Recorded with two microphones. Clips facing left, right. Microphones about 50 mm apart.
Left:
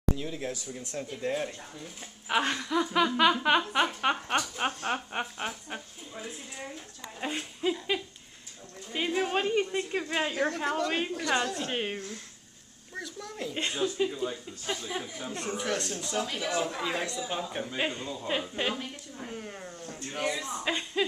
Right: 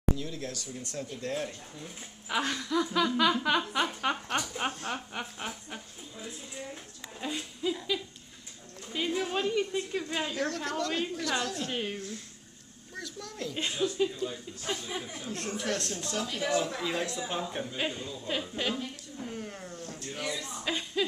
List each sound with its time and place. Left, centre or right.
0.2 s a woman's voice: centre
4.8 s a woman's voice: left
5.2 s a sound: left
7.2 s dog: left
8.9 s a woman's voice: left
10.4 s speech: centre
10.9 s a woman's voice: left
11.7 s speech: left
12.9 s a sound: centre
13.7 s a woman's voice: centre
19.2 s a sound: centre
20.1 s a sound: left
20.3 s music: left